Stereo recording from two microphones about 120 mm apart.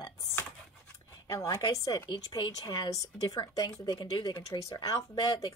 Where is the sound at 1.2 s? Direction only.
30° left (ahead or behind).